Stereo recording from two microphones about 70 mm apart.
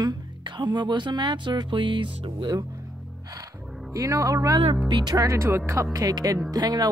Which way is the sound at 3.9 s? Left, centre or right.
Right.